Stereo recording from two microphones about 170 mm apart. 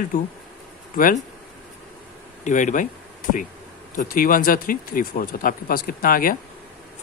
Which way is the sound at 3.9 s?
55° left (ahead or behind).